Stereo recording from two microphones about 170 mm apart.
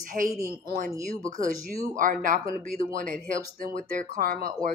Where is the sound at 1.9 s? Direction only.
50° right (ahead or behind).